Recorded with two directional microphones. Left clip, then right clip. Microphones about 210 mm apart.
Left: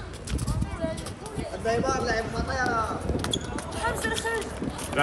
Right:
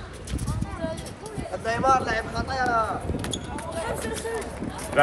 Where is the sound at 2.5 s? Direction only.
5° left (ahead or behind).